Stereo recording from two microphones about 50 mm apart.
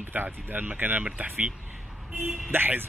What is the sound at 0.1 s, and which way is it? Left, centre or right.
Speech, right.